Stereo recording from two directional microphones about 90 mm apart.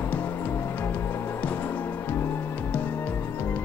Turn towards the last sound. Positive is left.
turn(degrees=25)  # may be behind; listen again after turning